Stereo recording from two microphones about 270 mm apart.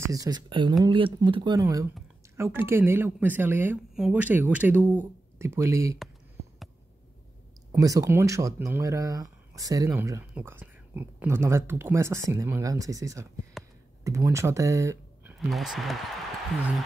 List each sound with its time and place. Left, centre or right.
0.1 s speech: centre
7.7 s speech: centre